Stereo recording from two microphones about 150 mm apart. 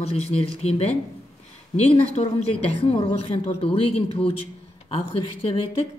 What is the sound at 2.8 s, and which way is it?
Speech, 40° left (ahead or behind).